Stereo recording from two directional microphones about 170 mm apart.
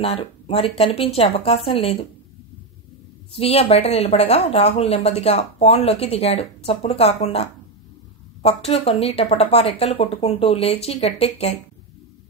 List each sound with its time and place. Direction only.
0.0 s a woman's voice: 35° left (ahead or behind)
3.3 s a woman's voice: 35° left (ahead or behind)
8.6 s a woman's voice: 35° left (ahead or behind)